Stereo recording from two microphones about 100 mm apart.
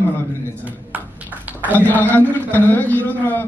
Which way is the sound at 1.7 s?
15° left (ahead or behind).